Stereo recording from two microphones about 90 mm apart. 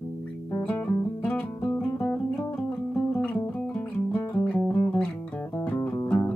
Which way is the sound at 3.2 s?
15° left (ahead or behind).